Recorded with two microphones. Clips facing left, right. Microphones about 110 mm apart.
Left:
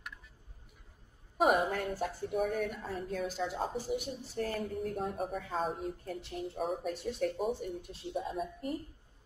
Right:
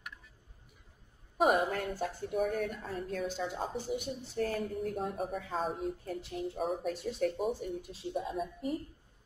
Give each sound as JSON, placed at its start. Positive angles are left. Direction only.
{"t": 1.4, "sound": "speech", "side_deg": 0}